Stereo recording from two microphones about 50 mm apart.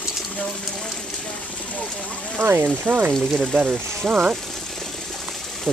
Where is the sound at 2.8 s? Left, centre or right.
Right.